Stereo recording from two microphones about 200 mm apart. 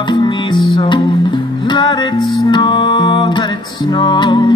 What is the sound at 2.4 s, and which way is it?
Music, 20° left (ahead or behind).